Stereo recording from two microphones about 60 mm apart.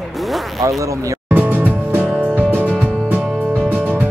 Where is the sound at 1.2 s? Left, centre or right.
Right.